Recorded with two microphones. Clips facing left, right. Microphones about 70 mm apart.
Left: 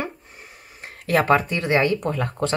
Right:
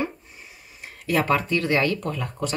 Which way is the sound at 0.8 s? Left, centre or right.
Left.